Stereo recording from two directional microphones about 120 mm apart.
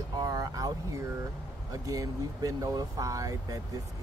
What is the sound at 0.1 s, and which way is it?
Speech, 30° right (ahead or behind).